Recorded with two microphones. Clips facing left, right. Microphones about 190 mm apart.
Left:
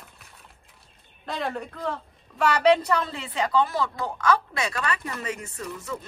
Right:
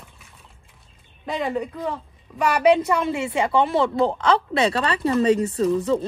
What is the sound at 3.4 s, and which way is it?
Speech, 25° right (ahead or behind).